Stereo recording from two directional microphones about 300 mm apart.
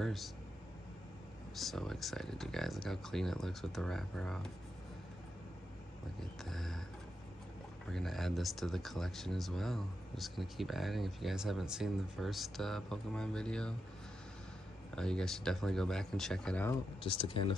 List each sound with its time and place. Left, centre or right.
0.0 s speech: centre
1.5 s speech: centre
6.4 s speech: centre
7.9 s speech: centre
15.0 s speech: centre
17.0 s speech: centre